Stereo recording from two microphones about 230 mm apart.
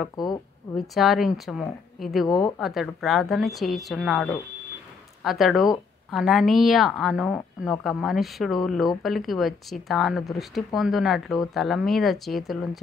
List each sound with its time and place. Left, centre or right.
0.1 s speech: centre
0.7 s speech: centre